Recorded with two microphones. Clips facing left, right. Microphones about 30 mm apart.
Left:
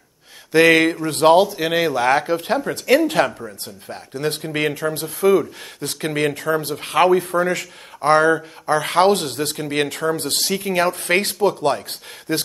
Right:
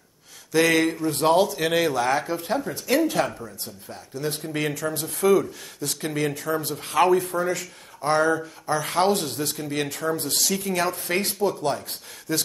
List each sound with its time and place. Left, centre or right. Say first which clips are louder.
0.5 s speech: left 6 dB; left
1.6 s speech: left 3 dB; centre
2.0 s speech: left 6 dB; left
3.2 s speech: left 6 dB; left
5.2 s speech: left 3 dB; left
5.8 s speech: left 5 dB; left